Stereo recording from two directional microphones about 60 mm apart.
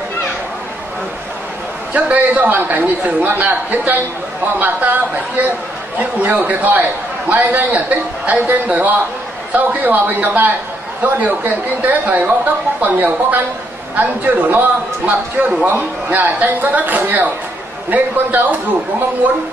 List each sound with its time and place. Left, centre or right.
2.0 s a man's voice: right